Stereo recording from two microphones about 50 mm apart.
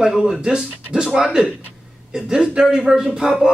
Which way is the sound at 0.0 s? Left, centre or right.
Centre.